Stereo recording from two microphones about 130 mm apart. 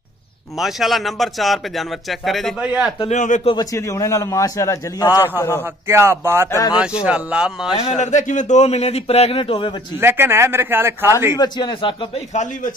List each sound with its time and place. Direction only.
0.6 s speech: centre (ahead or behind)
3.1 s a man's voice: 70° left (ahead or behind)
3.7 s a man's voice: 25° left (ahead or behind)
5.9 s speech: 20° right (ahead or behind)
6.5 s a man's voice: 30° left (ahead or behind)
6.8 s a man's voice: 10° right (ahead or behind)
8.0 s a man's voice: 65° left (ahead or behind); by 9.8 s 40° left (ahead or behind)
9.9 s a man's voice: 15° right (ahead or behind)
11.3 s a man's voice: 35° left (ahead or behind)